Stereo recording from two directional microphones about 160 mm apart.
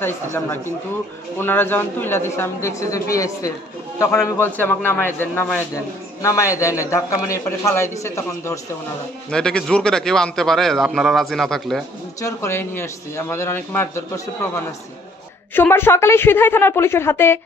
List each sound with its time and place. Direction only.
0.0 s a man's voice: 15° left (ahead or behind)
9.3 s a man's voice: 5° left (ahead or behind)
12.2 s a man's voice: 20° left (ahead or behind)